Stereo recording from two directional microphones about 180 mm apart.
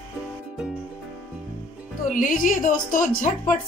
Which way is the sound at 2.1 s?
50° left (ahead or behind).